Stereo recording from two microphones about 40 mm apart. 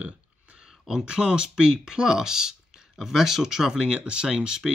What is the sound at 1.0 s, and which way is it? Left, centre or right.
Speech, right.